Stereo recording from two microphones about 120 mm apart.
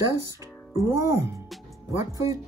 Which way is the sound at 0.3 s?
25° right (ahead or behind).